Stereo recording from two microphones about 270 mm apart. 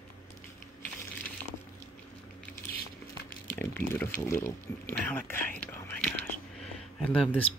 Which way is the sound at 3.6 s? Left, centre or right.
Centre.